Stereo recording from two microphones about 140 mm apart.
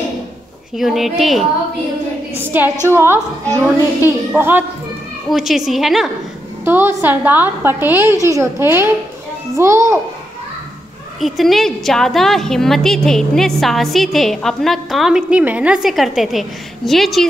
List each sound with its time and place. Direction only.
0.7 s a woman's voice: centre (ahead or behind)
2.5 s a woman's voice: 15° right (ahead or behind)
5.3 s a woman's voice: centre (ahead or behind)
6.6 s a woman's voice: 15° right (ahead or behind)
11.1 s a woman's voice: centre (ahead or behind)